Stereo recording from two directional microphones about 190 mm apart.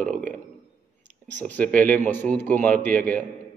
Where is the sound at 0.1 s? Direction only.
40° right (ahead or behind).